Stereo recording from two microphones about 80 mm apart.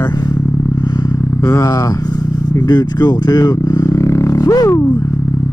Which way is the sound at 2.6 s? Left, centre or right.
Left.